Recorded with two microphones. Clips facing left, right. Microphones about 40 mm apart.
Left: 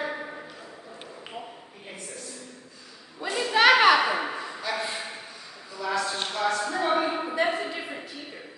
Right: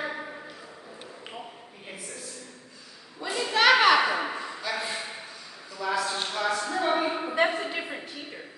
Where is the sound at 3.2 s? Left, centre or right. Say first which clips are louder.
Left 2 dB; centre.